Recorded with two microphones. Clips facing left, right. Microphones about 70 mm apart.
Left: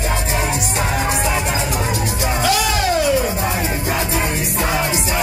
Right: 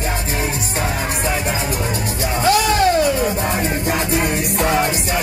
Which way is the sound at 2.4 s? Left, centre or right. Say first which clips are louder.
Right 4 dB; right.